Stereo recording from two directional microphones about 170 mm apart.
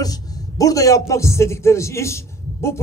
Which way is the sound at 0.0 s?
20° left (ahead or behind).